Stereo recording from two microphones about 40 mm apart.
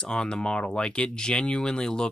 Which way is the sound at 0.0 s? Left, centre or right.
Left.